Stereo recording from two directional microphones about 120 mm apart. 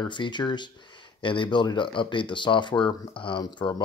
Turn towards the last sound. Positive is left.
turn(degrees=40)  # may be behind; listen again after turning